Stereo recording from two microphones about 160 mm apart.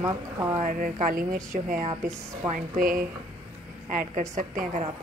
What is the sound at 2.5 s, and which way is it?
Speech, 55° right (ahead or behind).